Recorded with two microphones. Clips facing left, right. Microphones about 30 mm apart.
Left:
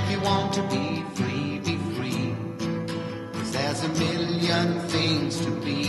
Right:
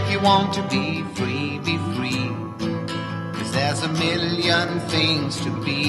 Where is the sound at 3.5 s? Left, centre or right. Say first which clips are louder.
Right 4 dB; right.